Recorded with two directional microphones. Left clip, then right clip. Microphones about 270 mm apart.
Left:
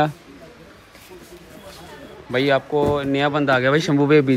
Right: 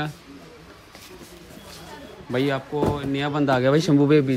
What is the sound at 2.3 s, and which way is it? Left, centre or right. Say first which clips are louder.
Speech: left 6 dB; centre.